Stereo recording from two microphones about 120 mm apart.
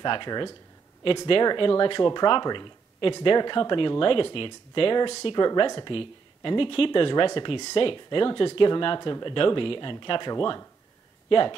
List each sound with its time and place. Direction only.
0.0 s speech: 40° left (ahead or behind)
5.3 s speech: 35° left (ahead or behind)